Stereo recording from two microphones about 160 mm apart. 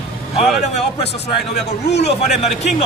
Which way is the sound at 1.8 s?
90° left.